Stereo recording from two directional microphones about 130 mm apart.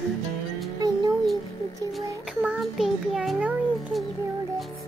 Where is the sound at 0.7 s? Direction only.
30° right (ahead or behind).